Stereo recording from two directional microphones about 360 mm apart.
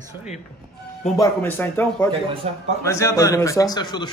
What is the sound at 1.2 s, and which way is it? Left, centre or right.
Speech, centre.